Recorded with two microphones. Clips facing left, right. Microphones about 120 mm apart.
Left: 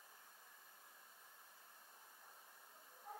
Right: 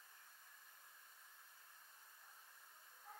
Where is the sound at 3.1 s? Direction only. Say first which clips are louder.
Left 6 dB; 20° left (ahead or behind).